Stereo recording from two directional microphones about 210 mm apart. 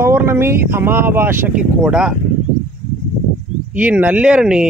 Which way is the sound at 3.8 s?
10° right (ahead or behind).